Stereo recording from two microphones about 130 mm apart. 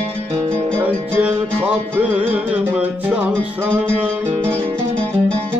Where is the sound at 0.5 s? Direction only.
15° right (ahead or behind).